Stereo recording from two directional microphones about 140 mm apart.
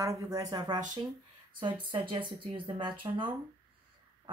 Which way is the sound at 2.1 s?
35° right (ahead or behind).